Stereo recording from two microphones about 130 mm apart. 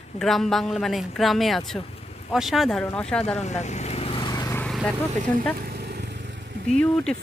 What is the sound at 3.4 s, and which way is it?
Vehicle, 60° left (ahead or behind).